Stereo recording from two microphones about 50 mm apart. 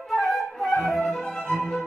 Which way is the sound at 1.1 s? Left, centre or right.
Centre.